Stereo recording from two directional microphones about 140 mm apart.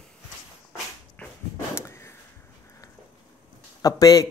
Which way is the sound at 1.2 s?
10° left (ahead or behind).